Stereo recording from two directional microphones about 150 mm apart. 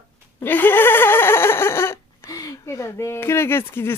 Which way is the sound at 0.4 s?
15° left (ahead or behind).